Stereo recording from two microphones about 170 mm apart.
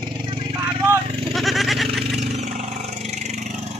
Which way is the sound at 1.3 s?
Centre (ahead or behind).